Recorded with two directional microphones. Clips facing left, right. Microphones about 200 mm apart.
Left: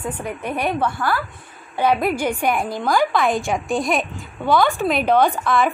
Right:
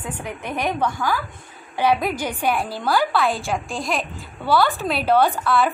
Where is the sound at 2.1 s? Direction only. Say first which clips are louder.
Left 2 dB; 10° left (ahead or behind).